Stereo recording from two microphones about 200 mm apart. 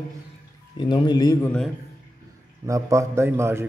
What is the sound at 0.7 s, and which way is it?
Speech, 25° left (ahead or behind).